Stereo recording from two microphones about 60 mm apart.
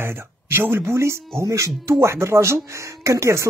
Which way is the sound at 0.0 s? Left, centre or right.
Right.